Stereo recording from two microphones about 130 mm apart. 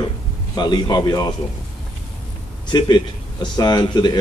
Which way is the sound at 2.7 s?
35° left (ahead or behind).